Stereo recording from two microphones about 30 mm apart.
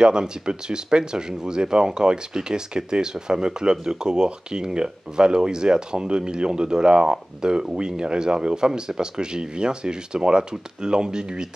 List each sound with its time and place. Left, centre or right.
0.0 s speech: right